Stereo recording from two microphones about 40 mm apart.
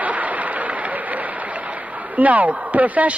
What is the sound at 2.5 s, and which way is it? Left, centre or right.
Speech, right.